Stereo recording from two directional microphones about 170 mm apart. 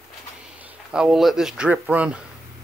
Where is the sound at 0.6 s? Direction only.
5° right (ahead or behind).